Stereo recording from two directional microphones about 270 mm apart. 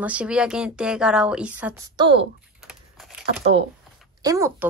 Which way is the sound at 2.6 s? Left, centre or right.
Centre.